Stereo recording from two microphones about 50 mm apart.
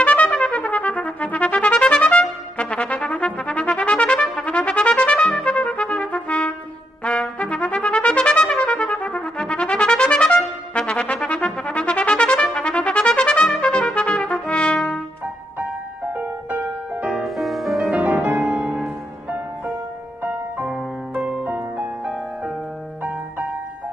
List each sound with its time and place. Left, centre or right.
0.0 s trumpet: left
5.8 s trumpet: centre
6.1 s trumpet: left
17.1 s music: centre
18.2 s music: right
21.1 s music: right